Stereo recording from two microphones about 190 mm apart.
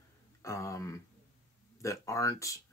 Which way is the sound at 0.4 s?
15° left (ahead or behind).